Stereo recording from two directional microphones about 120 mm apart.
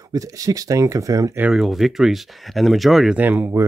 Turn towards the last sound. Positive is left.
turn(degrees=-15)  # may be behind; listen again after turning